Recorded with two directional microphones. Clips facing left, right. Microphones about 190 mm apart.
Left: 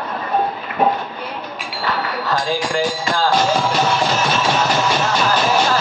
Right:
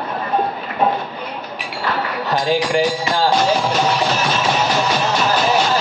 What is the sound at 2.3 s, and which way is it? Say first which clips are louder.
Speech: right 4 dB; 20° right (ahead or behind).